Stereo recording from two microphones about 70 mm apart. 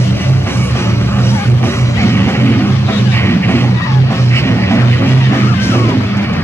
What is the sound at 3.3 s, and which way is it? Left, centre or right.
Music, left.